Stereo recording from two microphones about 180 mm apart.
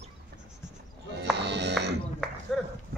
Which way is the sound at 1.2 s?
70° right (ahead or behind).